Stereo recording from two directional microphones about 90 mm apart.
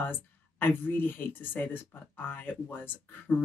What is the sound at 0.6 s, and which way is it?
Speech, 20° left (ahead or behind).